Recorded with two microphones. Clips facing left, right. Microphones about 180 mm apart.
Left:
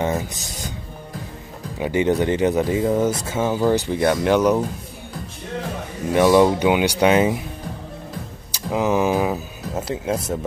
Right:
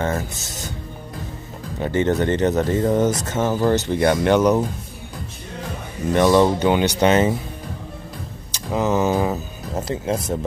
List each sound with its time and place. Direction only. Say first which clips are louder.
0.0 s speech: left 1 dB; 15° left (ahead or behind)
1.8 s speech: left 1 dB; 10° left (ahead or behind)
6.1 s speech: left 1 dB; 10° left (ahead or behind)
8.7 s speech: even; 10° left (ahead or behind)